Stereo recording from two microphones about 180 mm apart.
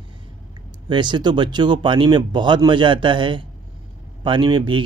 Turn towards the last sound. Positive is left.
turn(degrees=-25)  # may be behind; listen again after turning